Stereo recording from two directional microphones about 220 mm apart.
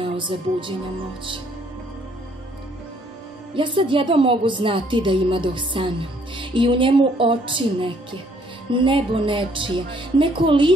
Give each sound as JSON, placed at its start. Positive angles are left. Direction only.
{"t": 0.0, "sound": "music", "side_deg": -25}
{"t": 3.5, "sound": "a woman's voice", "side_deg": -20}